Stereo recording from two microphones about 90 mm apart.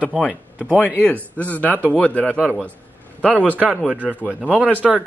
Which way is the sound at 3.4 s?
15° right (ahead or behind).